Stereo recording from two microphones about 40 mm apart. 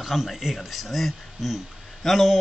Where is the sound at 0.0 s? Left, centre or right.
Centre.